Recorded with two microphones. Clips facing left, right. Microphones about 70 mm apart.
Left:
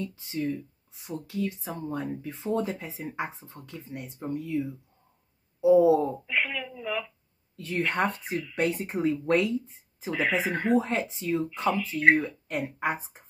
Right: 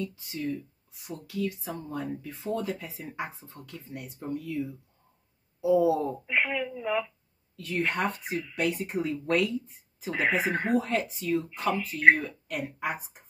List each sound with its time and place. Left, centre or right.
0.0 s speech: left
6.2 s speech: centre
7.5 s a woman's voice: left
10.1 s speech: right
10.7 s speech: left